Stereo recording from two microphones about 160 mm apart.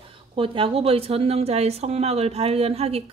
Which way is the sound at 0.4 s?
35° right (ahead or behind).